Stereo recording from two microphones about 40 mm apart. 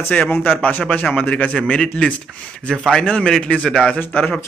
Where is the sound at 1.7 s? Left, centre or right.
Left.